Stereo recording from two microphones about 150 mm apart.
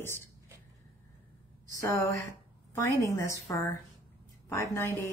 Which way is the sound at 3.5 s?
20° left (ahead or behind).